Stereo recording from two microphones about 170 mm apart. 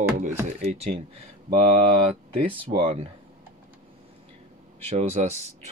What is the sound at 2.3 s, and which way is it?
Speech, 30° right (ahead or behind).